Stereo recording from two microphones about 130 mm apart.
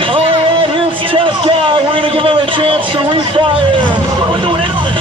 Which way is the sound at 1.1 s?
40° right (ahead or behind).